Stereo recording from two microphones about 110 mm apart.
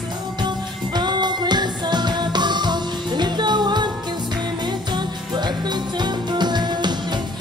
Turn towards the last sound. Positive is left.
turn(degrees=-40)  # may be behind; listen again after turning